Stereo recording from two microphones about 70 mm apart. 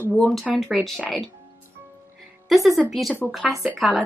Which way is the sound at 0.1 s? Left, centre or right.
Centre.